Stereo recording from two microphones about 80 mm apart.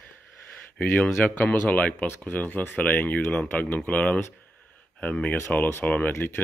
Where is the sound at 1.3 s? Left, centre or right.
Centre.